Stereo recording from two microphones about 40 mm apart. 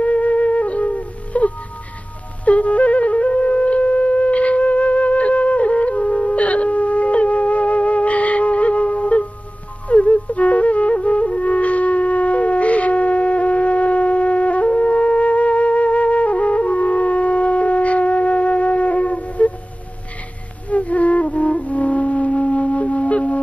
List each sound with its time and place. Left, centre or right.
0.0 s flute: left
6.3 s music: left
9.8 s flute: left
20.7 s flute: left